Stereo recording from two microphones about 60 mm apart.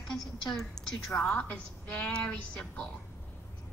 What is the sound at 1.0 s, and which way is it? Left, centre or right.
Speech, centre.